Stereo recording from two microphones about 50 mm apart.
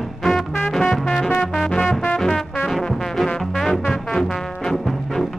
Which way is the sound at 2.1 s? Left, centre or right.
Centre.